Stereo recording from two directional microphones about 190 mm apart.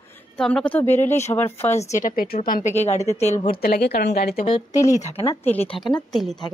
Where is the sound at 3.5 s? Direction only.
55° left (ahead or behind).